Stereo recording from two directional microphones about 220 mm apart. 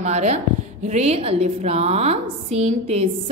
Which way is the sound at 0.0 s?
30° right (ahead or behind).